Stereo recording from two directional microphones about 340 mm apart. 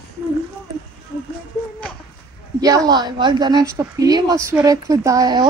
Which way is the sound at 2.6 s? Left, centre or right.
Centre.